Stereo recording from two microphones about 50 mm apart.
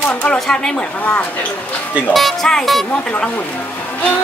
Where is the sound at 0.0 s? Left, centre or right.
Left.